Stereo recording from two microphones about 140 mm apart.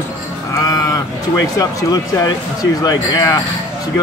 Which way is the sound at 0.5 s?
25° left (ahead or behind).